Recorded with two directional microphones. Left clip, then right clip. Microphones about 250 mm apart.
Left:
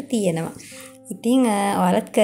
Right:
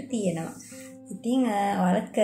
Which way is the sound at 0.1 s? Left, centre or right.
Left.